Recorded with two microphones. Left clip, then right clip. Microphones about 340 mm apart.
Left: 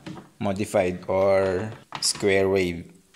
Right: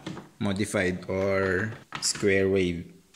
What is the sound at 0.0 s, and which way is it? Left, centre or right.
Speech, centre.